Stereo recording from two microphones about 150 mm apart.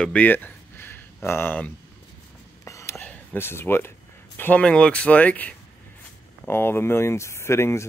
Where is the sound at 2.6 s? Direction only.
20° left (ahead or behind).